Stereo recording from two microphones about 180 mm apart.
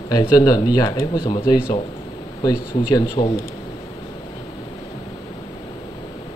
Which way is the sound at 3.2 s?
35° left (ahead or behind).